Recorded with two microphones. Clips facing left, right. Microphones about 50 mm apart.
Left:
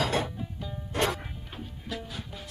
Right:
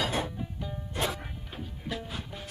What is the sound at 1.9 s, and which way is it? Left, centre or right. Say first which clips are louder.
Music: even; centre.